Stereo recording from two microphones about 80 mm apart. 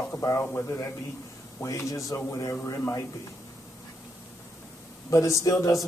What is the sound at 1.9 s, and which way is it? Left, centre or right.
Speech, left.